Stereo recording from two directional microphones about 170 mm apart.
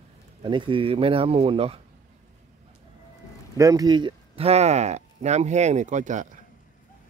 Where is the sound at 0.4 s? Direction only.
30° right (ahead or behind).